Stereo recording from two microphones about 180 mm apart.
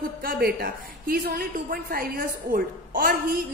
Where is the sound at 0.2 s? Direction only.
55° right (ahead or behind).